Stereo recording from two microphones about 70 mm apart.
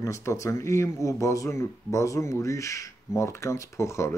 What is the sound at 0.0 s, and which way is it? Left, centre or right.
Speech, left.